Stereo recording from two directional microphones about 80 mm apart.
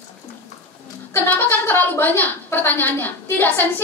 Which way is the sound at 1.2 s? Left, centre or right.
Left.